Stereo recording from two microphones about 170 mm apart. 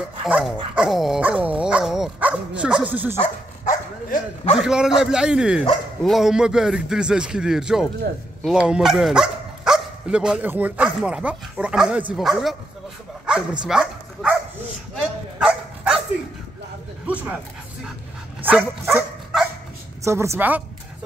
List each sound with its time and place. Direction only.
0.2 s speech: centre (ahead or behind)
3.6 s speech: 55° left (ahead or behind)
4.6 s speech: 5° right (ahead or behind)
15.0 s dog: 5° right (ahead or behind)
17.1 s a woman's voice: 10° right (ahead or behind)
18.4 s speech: 10° right (ahead or behind)
20.0 s a woman's voice: 15° right (ahead or behind)